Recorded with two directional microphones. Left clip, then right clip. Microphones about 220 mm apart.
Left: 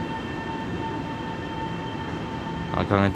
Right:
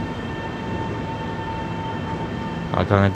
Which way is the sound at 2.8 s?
Centre (ahead or behind).